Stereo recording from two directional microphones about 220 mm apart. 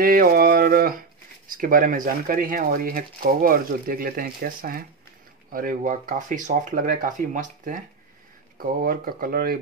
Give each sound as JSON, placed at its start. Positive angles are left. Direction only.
{"t": 0.0, "sound": "speech", "side_deg": -40}